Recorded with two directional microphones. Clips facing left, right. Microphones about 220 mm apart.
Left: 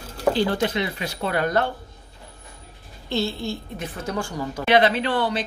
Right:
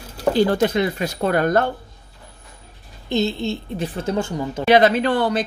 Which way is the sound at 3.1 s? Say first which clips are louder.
Right 4 dB; 20° right (ahead or behind).